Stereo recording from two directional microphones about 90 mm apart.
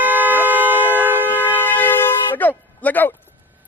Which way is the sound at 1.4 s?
20° left (ahead or behind).